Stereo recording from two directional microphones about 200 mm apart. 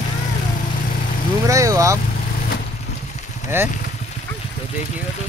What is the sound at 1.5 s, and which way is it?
Speech, 15° right (ahead or behind).